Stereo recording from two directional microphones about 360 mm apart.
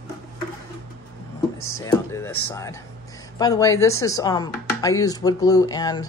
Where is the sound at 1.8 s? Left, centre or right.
Centre.